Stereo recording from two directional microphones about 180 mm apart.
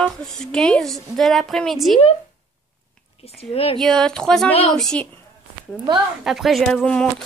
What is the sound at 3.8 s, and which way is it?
A woman's voice, 5° left (ahead or behind).